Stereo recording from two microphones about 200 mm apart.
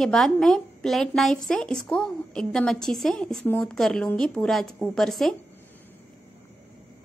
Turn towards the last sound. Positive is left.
turn(degrees=0)  # may be behind; listen again after turning